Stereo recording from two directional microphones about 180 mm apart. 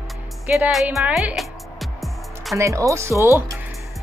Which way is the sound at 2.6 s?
15° right (ahead or behind).